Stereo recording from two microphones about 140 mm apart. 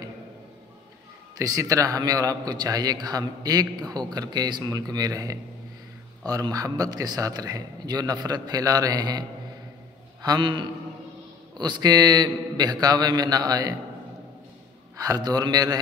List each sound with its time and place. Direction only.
1.4 s a man's voice: 25° right (ahead or behind)
10.2 s a man's voice: 30° right (ahead or behind)
15.0 s a man's voice: 25° right (ahead or behind)